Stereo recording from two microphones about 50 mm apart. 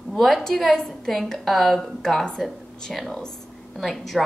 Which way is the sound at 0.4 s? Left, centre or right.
Centre.